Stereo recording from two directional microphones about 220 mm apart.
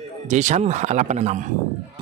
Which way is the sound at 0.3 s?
30° right (ahead or behind).